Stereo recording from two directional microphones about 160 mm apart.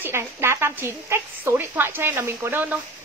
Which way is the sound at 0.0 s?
15° right (ahead or behind).